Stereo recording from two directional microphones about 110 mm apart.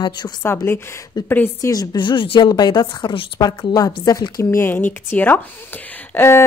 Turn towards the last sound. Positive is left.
turn(degrees=20)  # may be behind; listen again after turning